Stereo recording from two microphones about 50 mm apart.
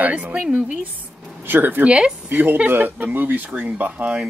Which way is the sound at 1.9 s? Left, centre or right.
Right.